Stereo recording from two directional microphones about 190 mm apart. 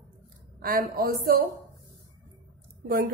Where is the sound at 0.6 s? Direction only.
50° right (ahead or behind).